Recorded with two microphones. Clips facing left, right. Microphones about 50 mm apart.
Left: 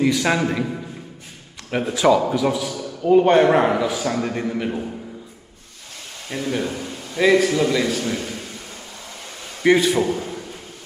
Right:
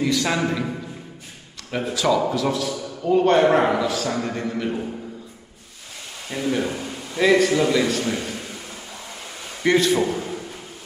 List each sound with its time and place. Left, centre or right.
0.0 s a man's voice: centre
2.0 s a man's voice: left
6.3 s a man's voice: centre
9.6 s a man's voice: centre